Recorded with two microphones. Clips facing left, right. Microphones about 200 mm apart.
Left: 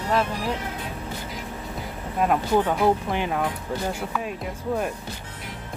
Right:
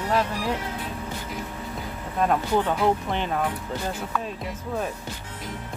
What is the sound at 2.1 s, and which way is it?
Speech, 10° left (ahead or behind).